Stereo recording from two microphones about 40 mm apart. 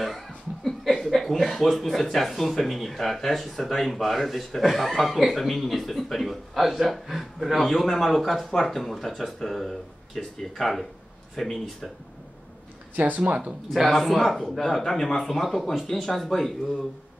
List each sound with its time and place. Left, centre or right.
0.7 s speech: centre
12.9 s speech: right
13.9 s speech: centre